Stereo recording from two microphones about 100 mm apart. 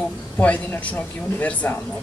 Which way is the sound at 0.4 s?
15° left (ahead or behind).